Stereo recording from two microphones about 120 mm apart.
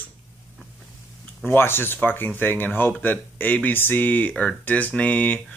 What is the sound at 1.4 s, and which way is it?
Speech, 20° left (ahead or behind).